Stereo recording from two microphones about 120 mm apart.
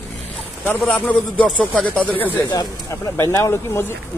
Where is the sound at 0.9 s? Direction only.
10° left (ahead or behind).